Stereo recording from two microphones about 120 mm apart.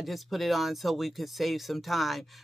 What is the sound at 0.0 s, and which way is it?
Speech, centre (ahead or behind).